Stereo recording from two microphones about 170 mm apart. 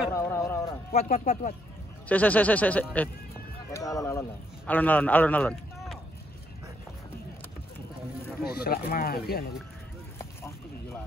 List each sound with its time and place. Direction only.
0.1 s a sound: 15° left (ahead or behind)
0.9 s speech: 50° left (ahead or behind)
2.0 s speech: 10° left (ahead or behind)
3.7 s a man's voice: 20° left (ahead or behind)
8.5 s speech: 60° left (ahead or behind)